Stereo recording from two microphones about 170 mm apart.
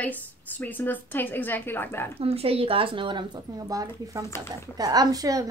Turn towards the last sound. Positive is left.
turn(degrees=-20)  # may be behind; listen again after turning